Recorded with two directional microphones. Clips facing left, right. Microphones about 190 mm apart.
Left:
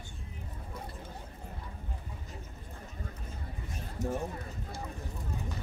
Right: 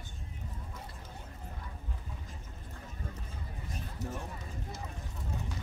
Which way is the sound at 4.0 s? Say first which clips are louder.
Left 7 dB; 50° left (ahead or behind).